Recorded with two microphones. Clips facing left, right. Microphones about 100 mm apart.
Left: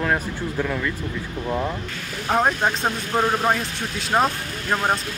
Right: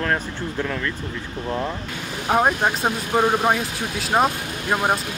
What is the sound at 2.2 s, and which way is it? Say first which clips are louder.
Speech: right 1 dB; 10° right (ahead or behind).